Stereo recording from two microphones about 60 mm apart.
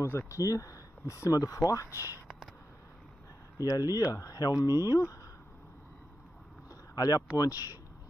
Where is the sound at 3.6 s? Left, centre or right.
Left.